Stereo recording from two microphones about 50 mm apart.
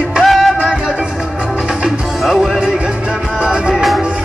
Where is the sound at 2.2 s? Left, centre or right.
Centre.